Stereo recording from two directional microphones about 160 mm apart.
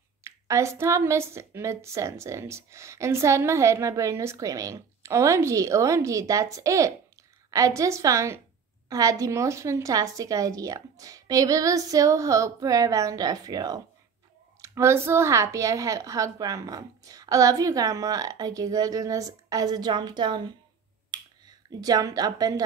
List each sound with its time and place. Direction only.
0.2 s a woman's voice: 20° right (ahead or behind)
21.1 s finger snapping: 25° right (ahead or behind)